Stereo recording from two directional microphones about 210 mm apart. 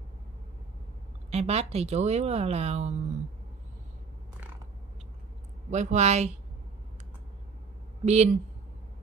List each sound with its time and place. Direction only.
1.3 s a woman's voice: 30° right (ahead or behind)
5.7 s a woman's voice: 35° right (ahead or behind)
8.0 s speech: 30° right (ahead or behind)